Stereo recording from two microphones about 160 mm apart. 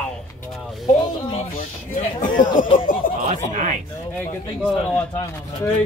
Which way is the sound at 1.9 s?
55° left (ahead or behind).